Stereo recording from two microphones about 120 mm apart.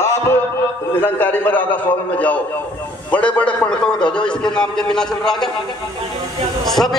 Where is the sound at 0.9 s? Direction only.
15° left (ahead or behind).